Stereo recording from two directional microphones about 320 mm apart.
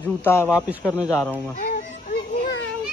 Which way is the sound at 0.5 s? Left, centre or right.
Centre.